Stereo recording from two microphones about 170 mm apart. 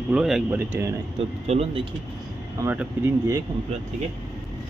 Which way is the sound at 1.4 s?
35° right (ahead or behind).